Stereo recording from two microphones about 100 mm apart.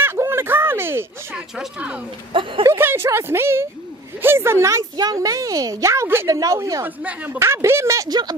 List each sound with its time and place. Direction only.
0.0 s a sound: 20° right (ahead or behind)
1.3 s speech: 10° right (ahead or behind)
2.6 s a woman's voice: 25° right (ahead or behind)
7.0 s speech: 15° right (ahead or behind)
7.3 s a woman's voice: 25° right (ahead or behind)
8.1 s speech: 45° right (ahead or behind)